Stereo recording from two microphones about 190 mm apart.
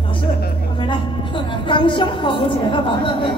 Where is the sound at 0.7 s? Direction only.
25° left (ahead or behind).